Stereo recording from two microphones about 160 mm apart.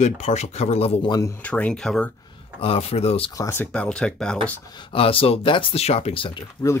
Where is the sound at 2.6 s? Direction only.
40° left (ahead or behind).